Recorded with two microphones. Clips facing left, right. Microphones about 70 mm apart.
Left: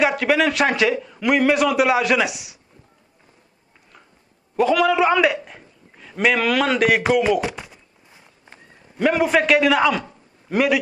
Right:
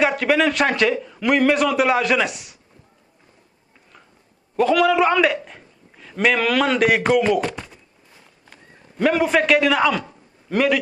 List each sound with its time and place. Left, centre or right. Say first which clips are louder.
0.0 s a man's voice: even; centre
4.6 s a man's voice: right 1 dB; centre
8.9 s a man's voice: even; centre